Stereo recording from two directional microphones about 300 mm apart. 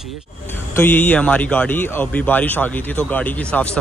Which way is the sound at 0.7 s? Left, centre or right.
Centre.